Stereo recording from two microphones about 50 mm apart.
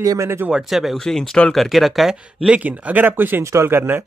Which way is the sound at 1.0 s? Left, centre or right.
Centre.